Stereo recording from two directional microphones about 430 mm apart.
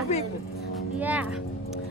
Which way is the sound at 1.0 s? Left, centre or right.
Centre.